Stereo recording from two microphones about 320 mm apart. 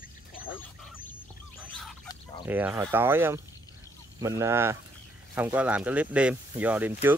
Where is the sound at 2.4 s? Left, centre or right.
Centre.